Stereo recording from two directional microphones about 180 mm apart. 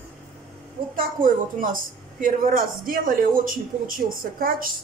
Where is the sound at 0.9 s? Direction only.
50° right (ahead or behind).